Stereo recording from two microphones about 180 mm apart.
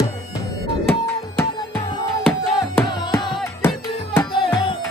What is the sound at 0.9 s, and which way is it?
Music, 15° left (ahead or behind).